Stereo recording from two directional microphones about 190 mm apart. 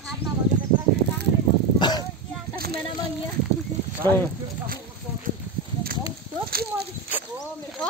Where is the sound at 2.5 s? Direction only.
55° right (ahead or behind).